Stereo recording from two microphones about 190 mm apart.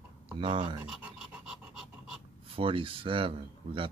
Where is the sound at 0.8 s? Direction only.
5° right (ahead or behind).